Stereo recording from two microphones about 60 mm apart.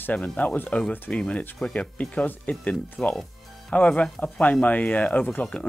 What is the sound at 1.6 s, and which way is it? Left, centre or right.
Speech, left.